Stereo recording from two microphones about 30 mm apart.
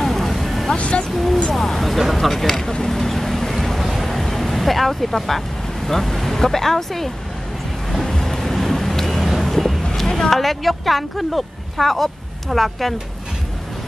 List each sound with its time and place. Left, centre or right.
0.0 s vehicle: centre
0.7 s a sound: left
1.0 s speech: centre
2.8 s boat: centre
4.5 s speech: centre
7.9 s vehicle: centre
10.0 s a sound: left
10.3 s speech: centre